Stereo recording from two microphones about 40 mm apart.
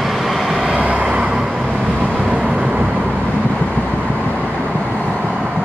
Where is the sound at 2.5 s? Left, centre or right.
Right.